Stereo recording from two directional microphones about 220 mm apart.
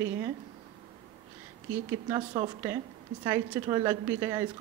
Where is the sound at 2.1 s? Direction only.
20° right (ahead or behind).